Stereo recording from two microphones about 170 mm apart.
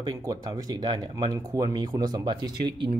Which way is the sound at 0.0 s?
20° right (ahead or behind).